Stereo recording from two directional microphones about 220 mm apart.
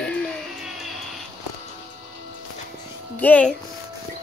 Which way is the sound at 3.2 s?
5° left (ahead or behind).